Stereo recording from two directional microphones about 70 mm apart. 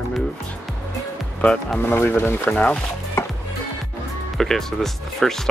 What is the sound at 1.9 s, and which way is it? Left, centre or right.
Speech, left.